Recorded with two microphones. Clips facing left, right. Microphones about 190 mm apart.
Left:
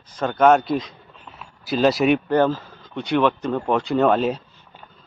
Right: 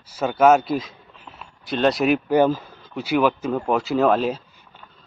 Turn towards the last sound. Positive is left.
turn(degrees=0)  # may be behind; listen again after turning